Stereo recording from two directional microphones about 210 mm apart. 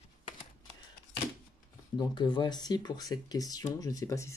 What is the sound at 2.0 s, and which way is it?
Speech, 20° left (ahead or behind).